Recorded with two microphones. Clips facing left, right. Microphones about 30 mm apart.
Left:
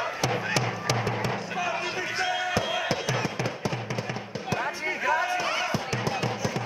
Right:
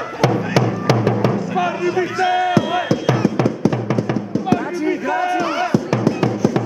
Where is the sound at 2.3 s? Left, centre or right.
Centre.